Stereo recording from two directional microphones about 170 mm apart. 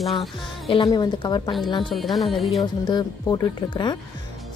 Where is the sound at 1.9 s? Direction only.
Centre (ahead or behind).